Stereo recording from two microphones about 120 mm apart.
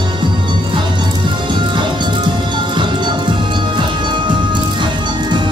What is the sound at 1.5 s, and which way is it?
Music, 40° right (ahead or behind).